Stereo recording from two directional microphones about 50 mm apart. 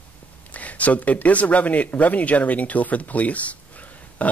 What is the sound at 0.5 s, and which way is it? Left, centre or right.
Speech, left.